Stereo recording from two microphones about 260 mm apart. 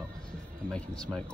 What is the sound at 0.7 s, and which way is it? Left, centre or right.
Speech, centre.